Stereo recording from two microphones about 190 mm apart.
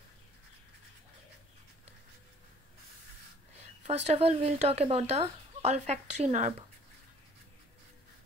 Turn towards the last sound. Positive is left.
turn(degrees=-40)  # may be behind; listen again after turning